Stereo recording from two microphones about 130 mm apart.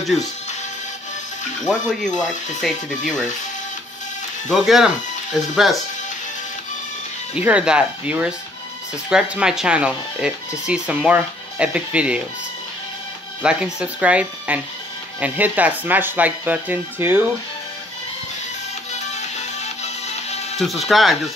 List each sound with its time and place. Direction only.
1.7 s speech: 5° left (ahead or behind)
2.7 s speech: 70° left (ahead or behind)
4.5 s speech: centre (ahead or behind)
7.3 s speech: 10° right (ahead or behind)
13.4 s speech: 10° right (ahead or behind)
19.6 s music: 60° left (ahead or behind)
20.5 s speech: centre (ahead or behind)